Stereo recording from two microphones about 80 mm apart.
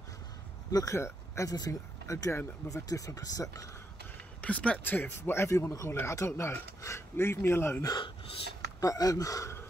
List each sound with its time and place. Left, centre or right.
0.7 s speech: left
0.9 s speech: left
4.4 s speech: centre
8.8 s speech: left